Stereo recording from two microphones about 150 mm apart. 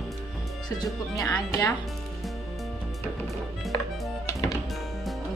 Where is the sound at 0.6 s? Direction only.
25° left (ahead or behind).